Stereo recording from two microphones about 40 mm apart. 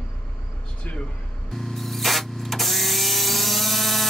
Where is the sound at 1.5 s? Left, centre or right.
Centre.